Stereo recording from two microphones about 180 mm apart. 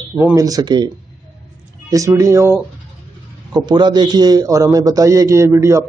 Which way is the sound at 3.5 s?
25° right (ahead or behind).